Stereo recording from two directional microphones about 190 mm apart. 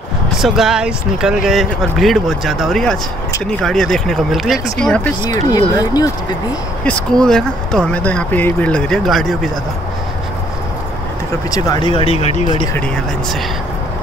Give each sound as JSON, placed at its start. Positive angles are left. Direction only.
{"t": 0.4, "sound": "speech", "side_deg": 0}
{"t": 5.2, "sound": "speech", "side_deg": 20}
{"t": 6.8, "sound": "speech", "side_deg": 5}
{"t": 11.5, "sound": "speech", "side_deg": 20}
{"t": 12.7, "sound": "speech", "side_deg": 5}